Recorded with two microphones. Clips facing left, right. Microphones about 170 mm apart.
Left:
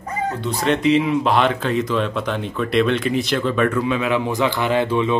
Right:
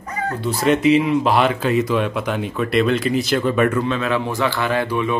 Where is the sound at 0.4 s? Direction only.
5° right (ahead or behind).